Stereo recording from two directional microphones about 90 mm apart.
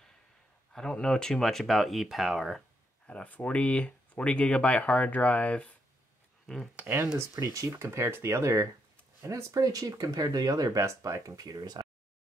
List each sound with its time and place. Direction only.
0.7 s speech: 10° left (ahead or behind)
3.1 s speech: 15° left (ahead or behind)
6.4 s speech: centre (ahead or behind)
6.8 s speech: 25° right (ahead or behind)
7.2 s speech: 40° right (ahead or behind)